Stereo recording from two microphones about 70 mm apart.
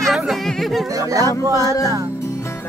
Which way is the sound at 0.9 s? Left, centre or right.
Right.